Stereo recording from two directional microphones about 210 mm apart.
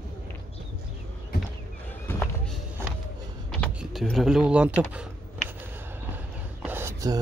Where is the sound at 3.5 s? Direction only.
Centre (ahead or behind).